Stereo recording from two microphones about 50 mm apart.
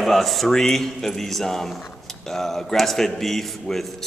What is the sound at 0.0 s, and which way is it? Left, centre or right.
Speech, centre.